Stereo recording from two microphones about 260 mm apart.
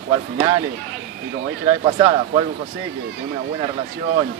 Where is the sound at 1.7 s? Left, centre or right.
Right.